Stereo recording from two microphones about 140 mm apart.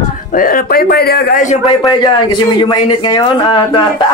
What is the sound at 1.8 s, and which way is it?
Speech, 30° left (ahead or behind).